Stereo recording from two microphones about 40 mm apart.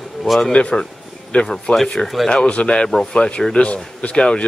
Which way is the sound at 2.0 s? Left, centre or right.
Centre.